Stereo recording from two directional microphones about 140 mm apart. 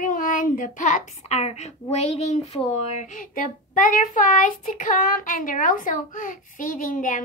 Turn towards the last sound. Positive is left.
turn(degrees=65)  # may be behind; listen again after turning